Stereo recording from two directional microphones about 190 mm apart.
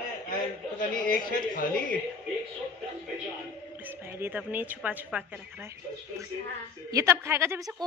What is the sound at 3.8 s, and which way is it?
A woman's voice, 10° right (ahead or behind).